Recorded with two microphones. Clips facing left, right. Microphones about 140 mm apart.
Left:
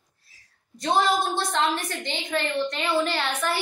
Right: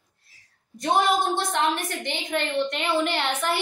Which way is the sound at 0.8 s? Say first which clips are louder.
Right 1 dB; 20° right (ahead or behind).